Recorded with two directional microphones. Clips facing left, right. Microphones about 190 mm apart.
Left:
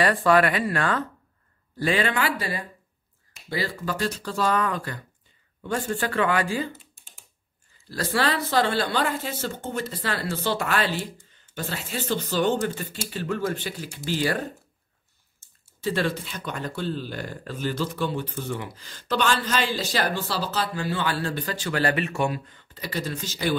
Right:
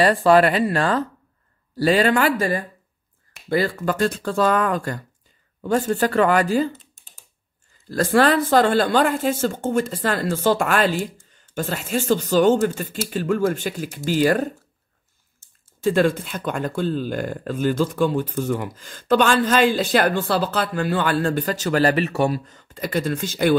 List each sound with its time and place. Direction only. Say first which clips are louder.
0.0 s speech: right 5 dB; 30° right (ahead or behind)
7.9 s speech: right 8 dB; 50° right (ahead or behind)
15.8 s speech: right 7 dB; 50° right (ahead or behind)